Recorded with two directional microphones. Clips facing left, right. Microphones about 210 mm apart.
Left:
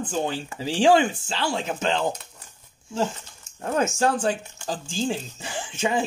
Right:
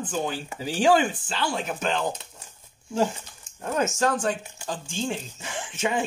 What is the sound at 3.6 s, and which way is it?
Speech, 30° left (ahead or behind).